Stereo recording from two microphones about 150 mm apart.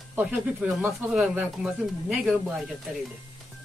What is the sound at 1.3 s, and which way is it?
Speech, 5° right (ahead or behind).